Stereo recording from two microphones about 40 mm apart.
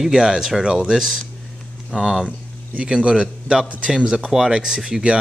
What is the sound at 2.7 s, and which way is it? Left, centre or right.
A man's voice, right.